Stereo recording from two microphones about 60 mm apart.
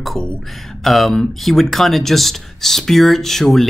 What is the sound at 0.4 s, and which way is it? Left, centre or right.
Speech, centre.